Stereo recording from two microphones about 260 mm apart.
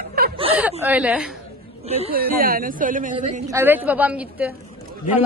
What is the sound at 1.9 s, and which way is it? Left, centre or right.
Speech, right.